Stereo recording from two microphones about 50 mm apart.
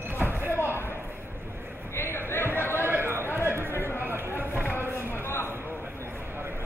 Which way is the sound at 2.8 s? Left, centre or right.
Right.